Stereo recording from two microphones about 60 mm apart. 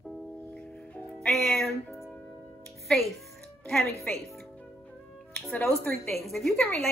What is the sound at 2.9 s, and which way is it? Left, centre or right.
Speech, centre.